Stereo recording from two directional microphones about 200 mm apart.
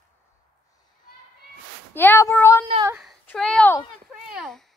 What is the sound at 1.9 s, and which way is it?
Speech, 10° left (ahead or behind).